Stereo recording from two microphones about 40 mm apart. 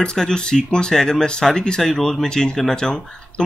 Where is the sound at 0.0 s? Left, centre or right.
Centre.